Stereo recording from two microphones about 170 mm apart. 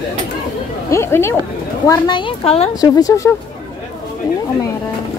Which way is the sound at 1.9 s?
25° left (ahead or behind).